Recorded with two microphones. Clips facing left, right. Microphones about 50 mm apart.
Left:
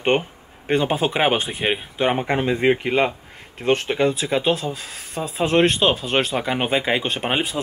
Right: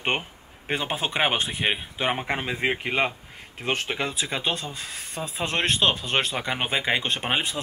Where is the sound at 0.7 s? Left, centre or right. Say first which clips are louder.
Left 8 dB; centre.